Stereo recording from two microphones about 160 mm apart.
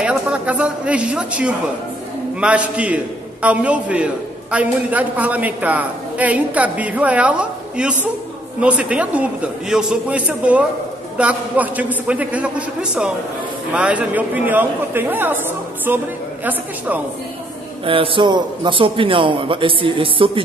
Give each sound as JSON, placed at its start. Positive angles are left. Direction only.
{"t": 0.0, "sound": "a man's voice", "side_deg": -10}
{"t": 17.8, "sound": "a man's voice", "side_deg": -35}